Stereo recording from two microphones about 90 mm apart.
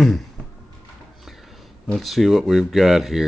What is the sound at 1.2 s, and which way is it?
Speech, centre (ahead or behind).